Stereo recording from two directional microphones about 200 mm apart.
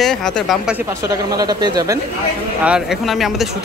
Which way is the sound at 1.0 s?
20° right (ahead or behind).